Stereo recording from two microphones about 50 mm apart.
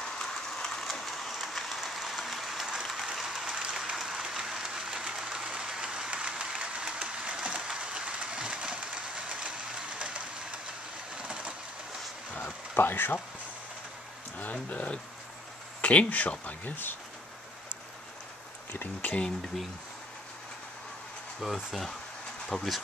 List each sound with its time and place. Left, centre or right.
0.0 s a sound: centre
3.6 s applause: centre
11.1 s a sound: right
12.7 s speech: left
14.4 s speech: left
18.7 s speech: left
21.4 s speech: centre
22.5 s speech: centre